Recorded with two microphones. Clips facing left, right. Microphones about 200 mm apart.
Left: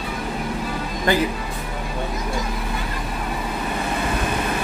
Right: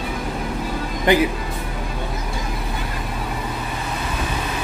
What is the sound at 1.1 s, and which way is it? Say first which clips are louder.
Speech: right 4 dB; 20° right (ahead or behind).